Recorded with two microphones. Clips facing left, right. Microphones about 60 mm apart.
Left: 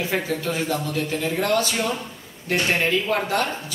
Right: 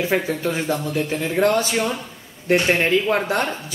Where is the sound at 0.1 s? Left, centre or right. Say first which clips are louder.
Right 3 dB; right.